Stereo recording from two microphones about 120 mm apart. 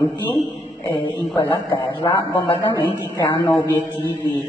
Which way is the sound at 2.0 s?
30° left (ahead or behind).